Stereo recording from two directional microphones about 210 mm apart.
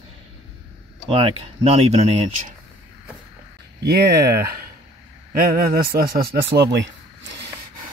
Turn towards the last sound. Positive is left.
turn(degrees=-55)  # may be behind; listen again after turning